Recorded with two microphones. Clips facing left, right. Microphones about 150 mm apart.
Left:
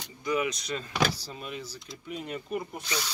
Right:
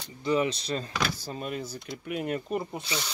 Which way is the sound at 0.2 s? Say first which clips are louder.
Right 3 dB; 30° right (ahead or behind).